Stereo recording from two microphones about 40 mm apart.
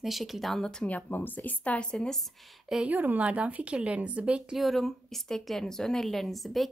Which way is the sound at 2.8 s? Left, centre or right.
Right.